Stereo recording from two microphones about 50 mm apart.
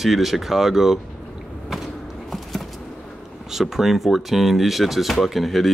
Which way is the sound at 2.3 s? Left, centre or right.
Centre.